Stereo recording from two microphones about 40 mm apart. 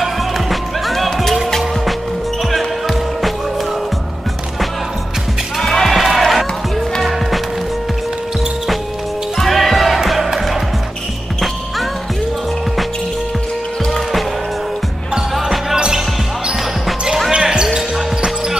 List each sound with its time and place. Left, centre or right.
0.0 s music: centre
2.5 s music: centre
5.6 s music: centre
9.4 s music: centre
15.3 s basketball bounce: centre
15.7 s basketball bounce: centre
17.4 s basketball bounce: centre